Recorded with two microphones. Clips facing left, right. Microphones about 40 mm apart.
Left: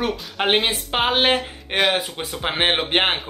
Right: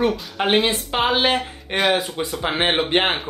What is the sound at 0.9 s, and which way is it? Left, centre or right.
Speech, left.